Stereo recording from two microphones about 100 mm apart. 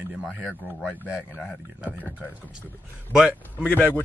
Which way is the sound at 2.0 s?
15° left (ahead or behind).